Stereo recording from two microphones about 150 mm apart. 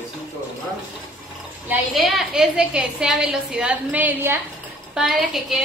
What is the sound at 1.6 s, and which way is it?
A woman's voice, 5° right (ahead or behind).